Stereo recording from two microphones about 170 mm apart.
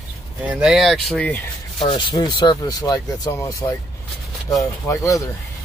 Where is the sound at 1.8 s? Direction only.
25° left (ahead or behind).